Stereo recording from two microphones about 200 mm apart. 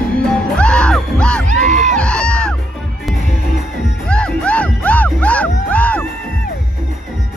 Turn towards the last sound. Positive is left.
turn(degrees=5)  # may be behind; listen again after turning